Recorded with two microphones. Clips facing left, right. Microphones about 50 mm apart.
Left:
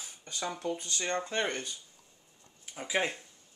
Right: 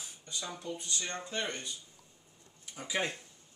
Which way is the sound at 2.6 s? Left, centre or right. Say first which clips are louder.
Left 3 dB; left.